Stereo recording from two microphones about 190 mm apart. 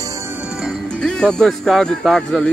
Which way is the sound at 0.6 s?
5° left (ahead or behind).